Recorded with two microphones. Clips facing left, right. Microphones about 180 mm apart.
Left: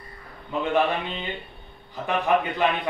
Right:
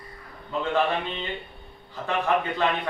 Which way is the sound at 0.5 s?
15° left (ahead or behind).